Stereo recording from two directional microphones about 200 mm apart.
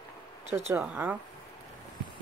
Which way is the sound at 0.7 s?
10° right (ahead or behind).